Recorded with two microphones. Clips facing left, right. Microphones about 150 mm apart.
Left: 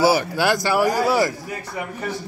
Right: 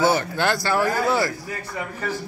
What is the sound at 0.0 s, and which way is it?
Speech, 10° left (ahead or behind).